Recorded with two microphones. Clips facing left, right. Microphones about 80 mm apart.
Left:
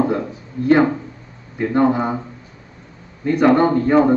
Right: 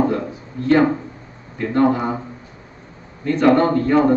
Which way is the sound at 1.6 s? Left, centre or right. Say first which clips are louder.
Left 1 dB; centre.